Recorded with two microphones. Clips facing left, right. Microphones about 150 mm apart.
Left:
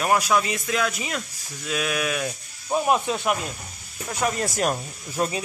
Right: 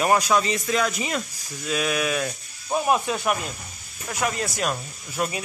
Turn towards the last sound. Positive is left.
turn(degrees=30)  # may be behind; listen again after turning